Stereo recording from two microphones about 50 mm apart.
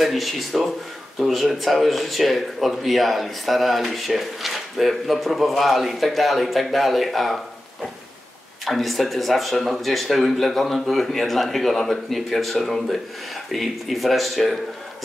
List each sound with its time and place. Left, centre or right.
0.0 s speech: centre
8.6 s speech: centre